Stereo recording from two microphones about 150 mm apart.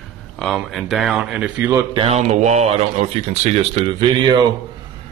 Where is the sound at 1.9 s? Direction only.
40° right (ahead or behind).